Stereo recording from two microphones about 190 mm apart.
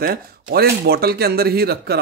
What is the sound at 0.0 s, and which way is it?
Speech, 50° right (ahead or behind).